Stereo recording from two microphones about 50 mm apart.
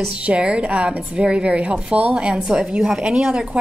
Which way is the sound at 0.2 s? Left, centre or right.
Right.